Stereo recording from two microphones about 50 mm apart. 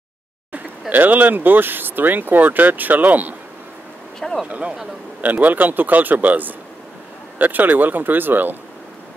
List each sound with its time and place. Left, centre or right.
0.5 s speech: right
4.5 s speech: right